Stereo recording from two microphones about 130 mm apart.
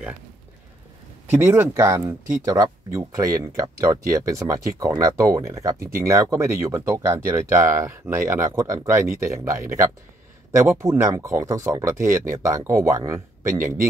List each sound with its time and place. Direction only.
1.3 s speech: 15° right (ahead or behind)